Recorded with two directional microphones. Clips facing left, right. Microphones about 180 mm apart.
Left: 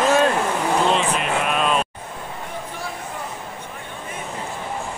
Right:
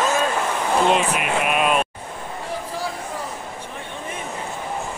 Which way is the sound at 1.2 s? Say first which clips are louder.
Right 1 dB; 10° right (ahead or behind).